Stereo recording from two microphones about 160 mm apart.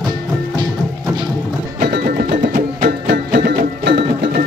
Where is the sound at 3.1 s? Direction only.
80° right.